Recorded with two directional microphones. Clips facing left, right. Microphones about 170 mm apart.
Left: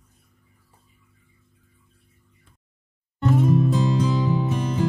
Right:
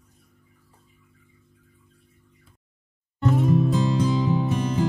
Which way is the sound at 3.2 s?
Centre (ahead or behind).